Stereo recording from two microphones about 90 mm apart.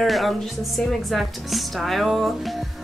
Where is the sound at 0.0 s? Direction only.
Centre (ahead or behind).